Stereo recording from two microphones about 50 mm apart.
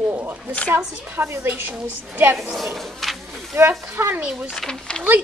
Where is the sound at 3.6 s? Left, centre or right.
Right.